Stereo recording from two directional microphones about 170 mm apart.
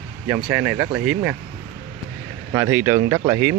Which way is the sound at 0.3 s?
5° right (ahead or behind).